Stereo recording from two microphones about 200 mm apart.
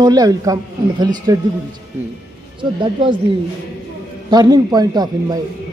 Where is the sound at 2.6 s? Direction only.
25° right (ahead or behind).